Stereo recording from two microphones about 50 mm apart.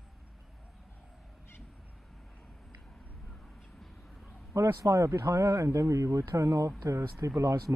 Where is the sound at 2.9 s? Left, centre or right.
Centre.